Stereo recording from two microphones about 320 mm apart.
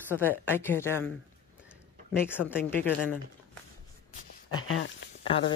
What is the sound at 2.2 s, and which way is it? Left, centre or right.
Speech, centre.